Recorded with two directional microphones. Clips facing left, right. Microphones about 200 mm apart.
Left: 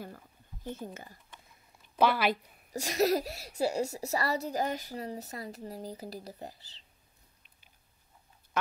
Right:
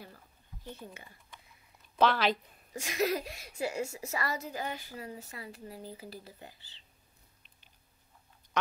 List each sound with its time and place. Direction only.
0.7 s speech: 45° left (ahead or behind)
2.0 s a woman's voice: 10° left (ahead or behind)
2.7 s a woman's voice: 40° left (ahead or behind)